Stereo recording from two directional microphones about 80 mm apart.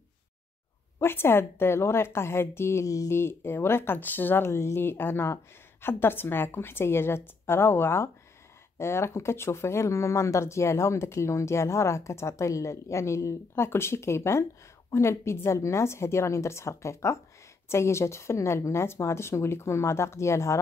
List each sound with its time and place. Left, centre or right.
1.0 s speech: left
4.5 s speech: left